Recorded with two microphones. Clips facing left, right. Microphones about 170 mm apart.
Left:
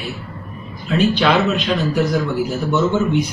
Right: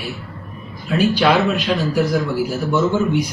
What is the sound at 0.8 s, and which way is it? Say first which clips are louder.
A man's voice: even; 10° right (ahead or behind).